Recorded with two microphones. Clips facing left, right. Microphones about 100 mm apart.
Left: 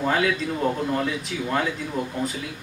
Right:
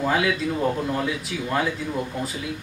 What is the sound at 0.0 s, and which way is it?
A man's voice, 5° right (ahead or behind).